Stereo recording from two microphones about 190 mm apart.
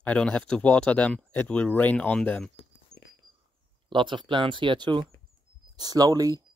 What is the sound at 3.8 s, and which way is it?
Speech, 25° right (ahead or behind).